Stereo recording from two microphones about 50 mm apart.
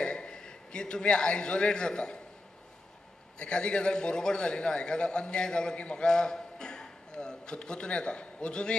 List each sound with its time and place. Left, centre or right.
0.0 s a man's voice: centre
3.3 s a man's voice: centre